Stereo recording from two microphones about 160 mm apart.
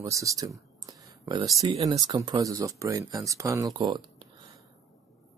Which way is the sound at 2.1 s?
25° right (ahead or behind).